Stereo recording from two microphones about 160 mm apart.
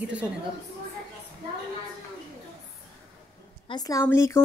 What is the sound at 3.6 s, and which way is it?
Speech, 25° left (ahead or behind).